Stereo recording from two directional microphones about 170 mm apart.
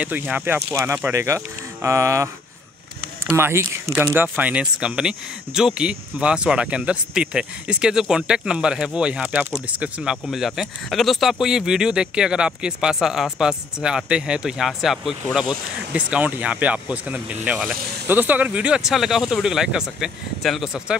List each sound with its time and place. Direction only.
0.0 s speech: 10° right (ahead or behind)
3.3 s speech: 15° right (ahead or behind)